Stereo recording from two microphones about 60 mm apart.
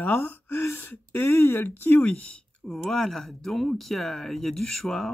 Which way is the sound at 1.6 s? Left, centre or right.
Left.